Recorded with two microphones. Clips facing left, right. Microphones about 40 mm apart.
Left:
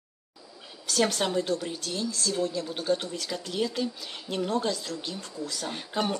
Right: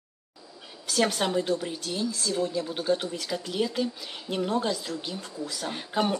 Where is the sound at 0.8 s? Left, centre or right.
Centre.